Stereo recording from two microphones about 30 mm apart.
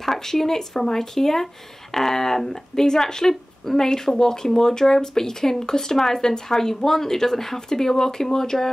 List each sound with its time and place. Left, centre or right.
0.0 s speech: centre